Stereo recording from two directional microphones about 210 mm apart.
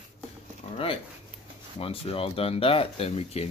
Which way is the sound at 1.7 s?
25° left (ahead or behind).